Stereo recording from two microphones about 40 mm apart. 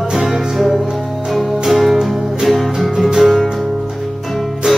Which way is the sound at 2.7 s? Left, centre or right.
Centre.